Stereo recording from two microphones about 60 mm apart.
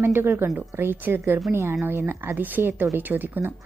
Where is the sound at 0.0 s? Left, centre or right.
Right.